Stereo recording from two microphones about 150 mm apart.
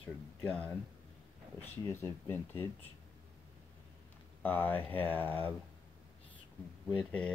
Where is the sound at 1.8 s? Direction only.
15° left (ahead or behind).